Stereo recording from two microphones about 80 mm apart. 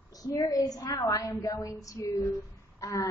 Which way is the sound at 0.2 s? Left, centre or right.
Left.